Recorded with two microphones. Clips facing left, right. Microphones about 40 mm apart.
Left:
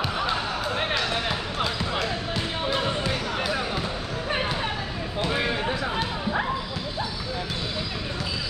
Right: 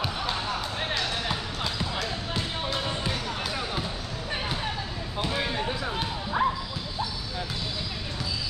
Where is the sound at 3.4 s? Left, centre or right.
Centre.